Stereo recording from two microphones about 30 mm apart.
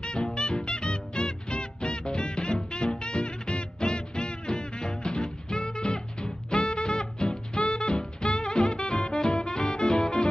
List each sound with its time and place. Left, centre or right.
0.0 s music: left